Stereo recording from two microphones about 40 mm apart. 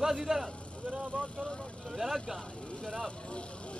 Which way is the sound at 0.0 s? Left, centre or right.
Centre.